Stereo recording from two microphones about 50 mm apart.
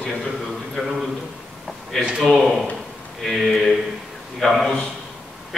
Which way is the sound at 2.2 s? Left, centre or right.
Centre.